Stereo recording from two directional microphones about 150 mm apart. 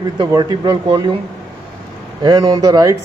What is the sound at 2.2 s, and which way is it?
Speech, 25° right (ahead or behind).